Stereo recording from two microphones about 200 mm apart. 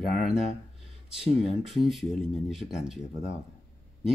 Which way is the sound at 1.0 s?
5° right (ahead or behind).